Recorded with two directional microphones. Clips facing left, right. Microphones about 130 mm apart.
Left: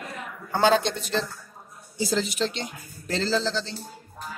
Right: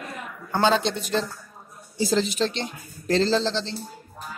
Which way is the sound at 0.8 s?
5° right (ahead or behind).